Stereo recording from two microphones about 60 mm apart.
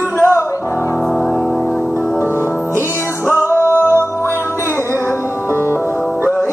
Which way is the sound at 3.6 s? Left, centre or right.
Left.